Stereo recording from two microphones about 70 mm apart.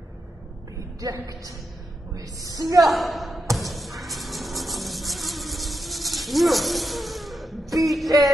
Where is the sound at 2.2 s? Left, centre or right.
Right.